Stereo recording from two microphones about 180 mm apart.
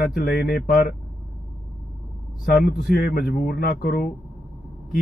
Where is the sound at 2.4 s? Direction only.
55° left (ahead or behind).